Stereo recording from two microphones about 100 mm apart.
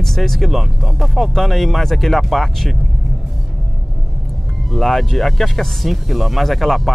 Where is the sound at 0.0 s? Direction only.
5° left (ahead or behind).